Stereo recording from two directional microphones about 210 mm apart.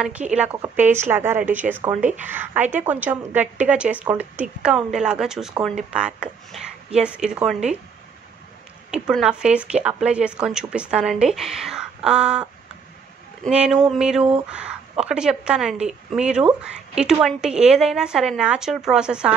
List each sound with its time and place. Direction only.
0.3 s a woman's voice: 5° right (ahead or behind)
8.9 s a woman's voice: 5° right (ahead or behind)